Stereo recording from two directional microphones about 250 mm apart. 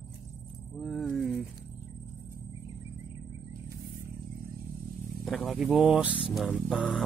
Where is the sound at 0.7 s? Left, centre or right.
Centre.